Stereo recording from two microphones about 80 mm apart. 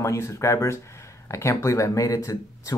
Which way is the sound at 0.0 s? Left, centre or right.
Left.